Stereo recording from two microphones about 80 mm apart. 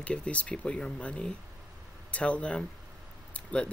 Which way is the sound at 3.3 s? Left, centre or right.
Centre.